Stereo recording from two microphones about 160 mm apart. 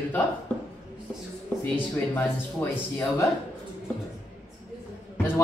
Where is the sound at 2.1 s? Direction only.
15° left (ahead or behind).